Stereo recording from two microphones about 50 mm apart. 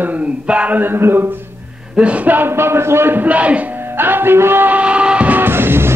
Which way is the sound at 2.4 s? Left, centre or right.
Right.